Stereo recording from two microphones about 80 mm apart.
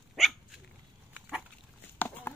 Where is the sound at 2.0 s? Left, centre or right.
Left.